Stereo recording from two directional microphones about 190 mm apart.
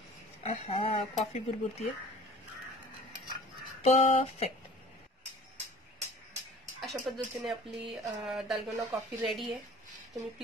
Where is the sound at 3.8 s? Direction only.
30° left (ahead or behind).